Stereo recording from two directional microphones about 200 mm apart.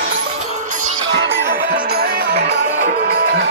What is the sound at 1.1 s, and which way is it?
Music, 55° right (ahead or behind).